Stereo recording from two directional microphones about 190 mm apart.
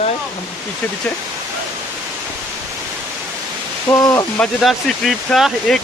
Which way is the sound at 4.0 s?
20° left (ahead or behind).